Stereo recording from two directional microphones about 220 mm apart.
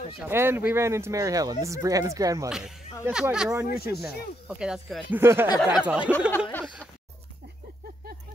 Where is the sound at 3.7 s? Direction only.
45° left (ahead or behind).